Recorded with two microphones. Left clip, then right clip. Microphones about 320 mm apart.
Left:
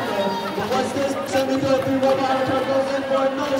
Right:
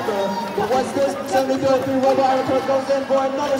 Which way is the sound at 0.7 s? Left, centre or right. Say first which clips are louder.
Right 2 dB; right.